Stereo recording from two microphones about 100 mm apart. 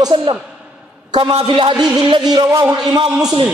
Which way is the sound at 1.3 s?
60° right (ahead or behind).